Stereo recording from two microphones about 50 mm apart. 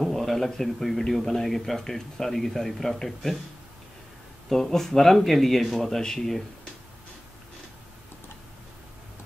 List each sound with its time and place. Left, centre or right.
0.0 s a man's voice: centre
4.5 s speech: centre